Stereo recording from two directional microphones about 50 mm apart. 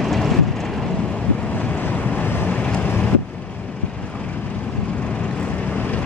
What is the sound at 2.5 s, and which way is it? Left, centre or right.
Boat, left.